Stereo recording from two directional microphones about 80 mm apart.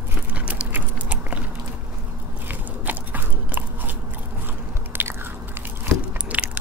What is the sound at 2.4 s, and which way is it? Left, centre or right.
Biting, right.